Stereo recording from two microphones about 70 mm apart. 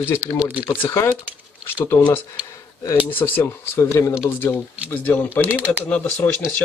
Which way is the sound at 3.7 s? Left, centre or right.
Left.